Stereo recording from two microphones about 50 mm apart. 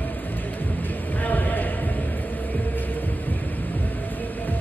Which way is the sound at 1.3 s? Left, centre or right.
Left.